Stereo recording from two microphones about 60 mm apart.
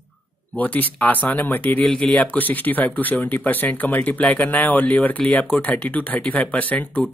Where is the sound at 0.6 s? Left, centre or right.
Left.